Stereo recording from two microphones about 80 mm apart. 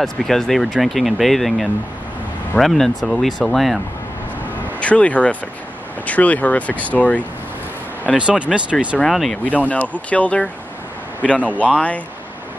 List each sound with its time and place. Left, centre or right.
0.0 s speech: centre
4.7 s speech: centre
8.2 s speech: centre
9.1 s speech: centre
9.4 s speech: centre